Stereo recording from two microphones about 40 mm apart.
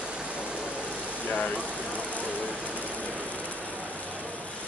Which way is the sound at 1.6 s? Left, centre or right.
Right.